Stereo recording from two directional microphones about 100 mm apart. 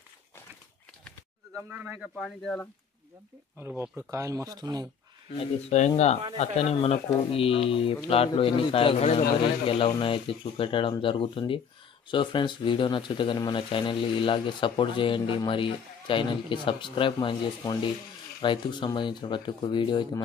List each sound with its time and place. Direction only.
1.7 s speech: 15° right (ahead or behind)
2.1 s speech: 5° left (ahead or behind)
3.5 s speech: 20° right (ahead or behind); by 4.8 s 40° right (ahead or behind)
5.7 s speech: 90° left
9.7 s speech: 65° left (ahead or behind)